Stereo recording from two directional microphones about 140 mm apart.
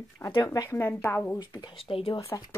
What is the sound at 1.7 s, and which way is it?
Speech, 40° left (ahead or behind).